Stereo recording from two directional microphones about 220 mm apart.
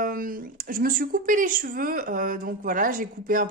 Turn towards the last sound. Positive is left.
turn(degrees=-40)  # may be behind; listen again after turning